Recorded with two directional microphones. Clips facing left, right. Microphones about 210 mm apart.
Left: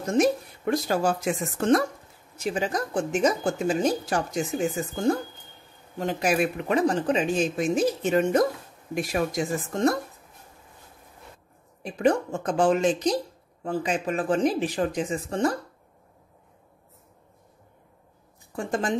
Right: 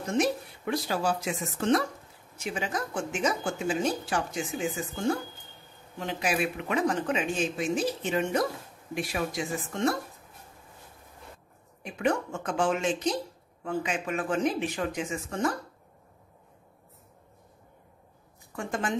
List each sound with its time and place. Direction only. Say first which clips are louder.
0.1 s speech: left 5 dB; 45° left (ahead or behind)
11.8 s speech: left 5 dB; 35° left (ahead or behind)
18.5 s speech: left 4 dB; 35° left (ahead or behind)